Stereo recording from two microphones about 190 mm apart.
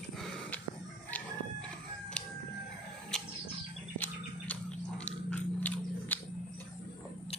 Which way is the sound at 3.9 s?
10° left (ahead or behind).